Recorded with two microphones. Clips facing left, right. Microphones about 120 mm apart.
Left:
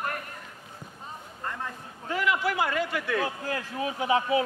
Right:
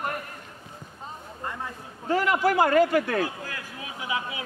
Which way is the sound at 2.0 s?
40° right (ahead or behind).